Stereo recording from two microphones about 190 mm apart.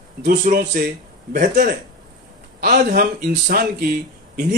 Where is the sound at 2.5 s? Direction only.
50° right (ahead or behind).